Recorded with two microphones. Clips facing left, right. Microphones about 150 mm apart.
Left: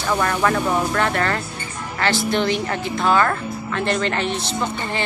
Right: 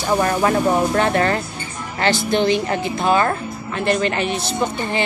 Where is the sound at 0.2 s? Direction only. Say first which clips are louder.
Right 2 dB; 25° right (ahead or behind).